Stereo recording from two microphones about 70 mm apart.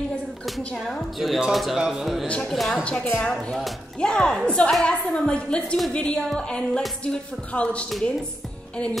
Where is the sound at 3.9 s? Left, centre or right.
Centre.